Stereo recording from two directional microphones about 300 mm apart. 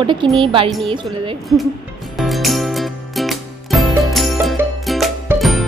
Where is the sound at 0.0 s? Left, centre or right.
Centre.